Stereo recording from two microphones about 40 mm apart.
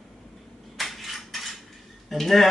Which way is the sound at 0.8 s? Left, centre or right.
Centre.